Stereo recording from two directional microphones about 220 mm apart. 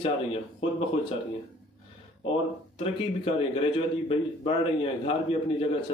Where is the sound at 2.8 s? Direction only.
25° left (ahead or behind).